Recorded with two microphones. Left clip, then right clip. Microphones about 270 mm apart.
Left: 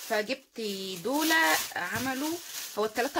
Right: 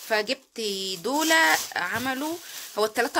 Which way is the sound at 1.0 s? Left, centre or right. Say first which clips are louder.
Right 4 dB; right.